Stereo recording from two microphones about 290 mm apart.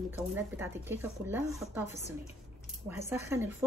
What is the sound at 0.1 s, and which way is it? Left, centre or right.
Speech, centre.